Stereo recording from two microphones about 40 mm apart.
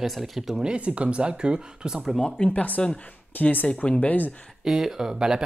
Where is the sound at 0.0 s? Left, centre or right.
Centre.